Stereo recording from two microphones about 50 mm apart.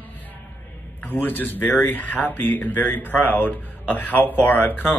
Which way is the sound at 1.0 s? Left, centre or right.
Left.